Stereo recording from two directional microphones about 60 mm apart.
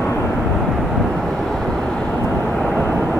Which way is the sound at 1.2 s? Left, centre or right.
Centre.